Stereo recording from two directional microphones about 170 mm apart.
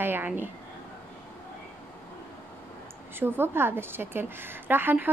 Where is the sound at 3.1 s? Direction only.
15° right (ahead or behind).